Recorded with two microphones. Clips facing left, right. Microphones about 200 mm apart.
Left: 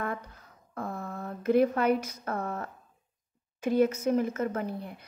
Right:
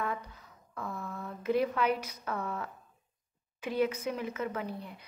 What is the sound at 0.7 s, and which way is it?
A woman's voice, 50° left (ahead or behind).